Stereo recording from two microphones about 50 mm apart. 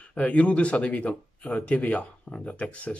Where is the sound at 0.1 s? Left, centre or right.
Left.